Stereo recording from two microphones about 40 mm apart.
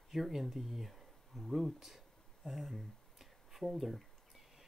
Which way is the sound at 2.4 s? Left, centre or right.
Centre.